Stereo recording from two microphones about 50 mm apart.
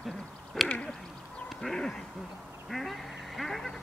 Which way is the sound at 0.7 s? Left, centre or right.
Left.